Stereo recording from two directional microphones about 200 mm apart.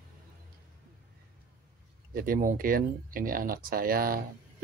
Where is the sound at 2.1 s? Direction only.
45° right (ahead or behind).